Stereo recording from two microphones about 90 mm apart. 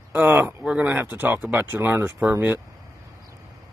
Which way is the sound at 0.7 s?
15° right (ahead or behind).